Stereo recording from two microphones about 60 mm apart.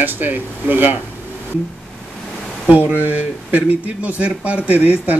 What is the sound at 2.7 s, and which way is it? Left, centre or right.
Speech, right.